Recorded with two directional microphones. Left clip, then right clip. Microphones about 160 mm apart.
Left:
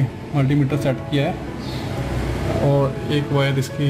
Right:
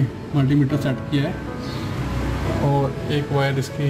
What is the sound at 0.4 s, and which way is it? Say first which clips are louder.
Speech: even; 10° left (ahead or behind).